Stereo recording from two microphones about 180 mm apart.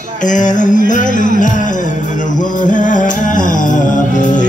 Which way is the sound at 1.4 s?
45° left (ahead or behind).